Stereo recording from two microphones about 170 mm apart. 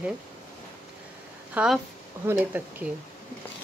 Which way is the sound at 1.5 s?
5° right (ahead or behind).